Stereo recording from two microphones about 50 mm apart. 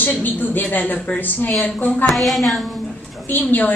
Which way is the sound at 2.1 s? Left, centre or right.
Centre.